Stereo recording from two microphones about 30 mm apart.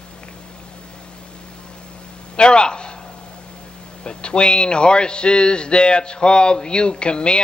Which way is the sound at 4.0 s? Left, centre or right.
Left.